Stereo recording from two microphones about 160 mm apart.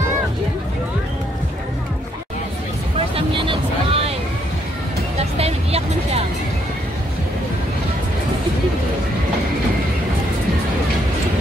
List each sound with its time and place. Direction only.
3.2 s vehicle: 35° right (ahead or behind)
5.2 s music: 40° right (ahead or behind)